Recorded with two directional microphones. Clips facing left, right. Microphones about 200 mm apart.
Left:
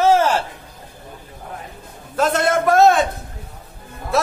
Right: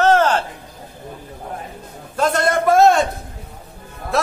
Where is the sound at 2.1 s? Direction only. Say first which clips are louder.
Even; 5° left (ahead or behind).